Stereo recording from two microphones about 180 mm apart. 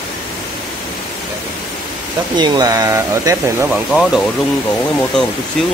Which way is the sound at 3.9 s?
Centre (ahead or behind).